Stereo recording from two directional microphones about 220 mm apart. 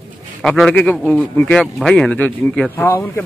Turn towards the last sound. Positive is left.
turn(degrees=10)  # may be behind; listen again after turning